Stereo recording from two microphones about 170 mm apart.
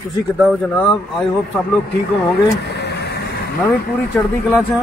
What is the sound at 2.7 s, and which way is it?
Vehicle, 80° left.